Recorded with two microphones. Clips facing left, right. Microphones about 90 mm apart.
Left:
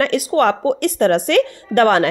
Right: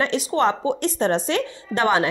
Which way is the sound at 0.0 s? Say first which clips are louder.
Left 5 dB; 55° left (ahead or behind).